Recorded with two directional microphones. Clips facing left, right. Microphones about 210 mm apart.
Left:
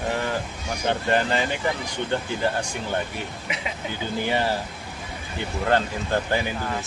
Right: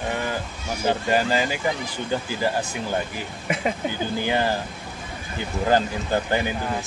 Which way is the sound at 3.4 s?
45° right (ahead or behind).